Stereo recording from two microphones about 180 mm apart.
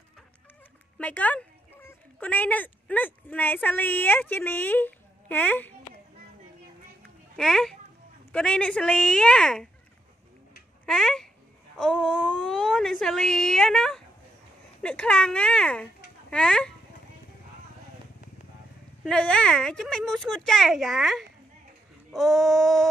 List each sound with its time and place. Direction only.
0.9 s speech: 5° left (ahead or behind)
7.3 s a woman's voice: centre (ahead or behind)
10.9 s a woman's voice: 5° left (ahead or behind)
19.0 s a woman's voice: 5° left (ahead or behind)